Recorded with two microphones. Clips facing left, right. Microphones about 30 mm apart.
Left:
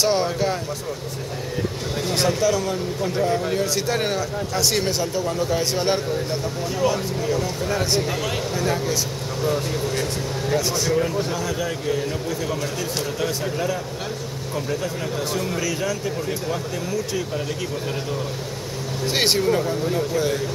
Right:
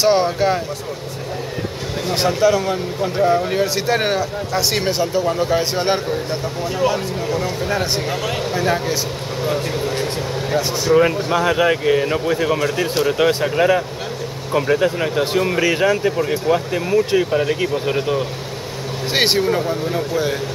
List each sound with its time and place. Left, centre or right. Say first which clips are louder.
0.0 s speech: right 5 dB; right
2.0 s speech: right 5 dB; centre
11.3 s speech: right 10 dB; right
19.1 s speech: right 3 dB; right